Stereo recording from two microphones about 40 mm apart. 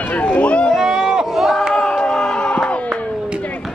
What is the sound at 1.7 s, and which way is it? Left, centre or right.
Crowd, centre.